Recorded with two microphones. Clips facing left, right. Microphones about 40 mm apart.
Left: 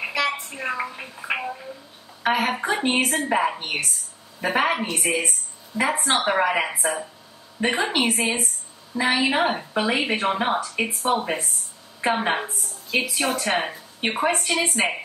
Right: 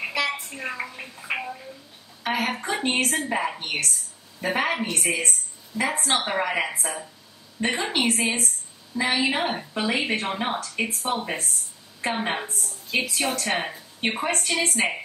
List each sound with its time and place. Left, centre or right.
0.0 s a woman's voice: centre
1.3 s a sound: centre
2.2 s a woman's voice: centre